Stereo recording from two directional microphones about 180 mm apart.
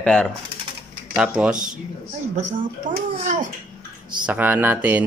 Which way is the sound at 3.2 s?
45° right (ahead or behind).